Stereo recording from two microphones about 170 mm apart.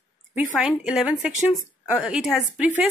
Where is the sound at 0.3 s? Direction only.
5° right (ahead or behind).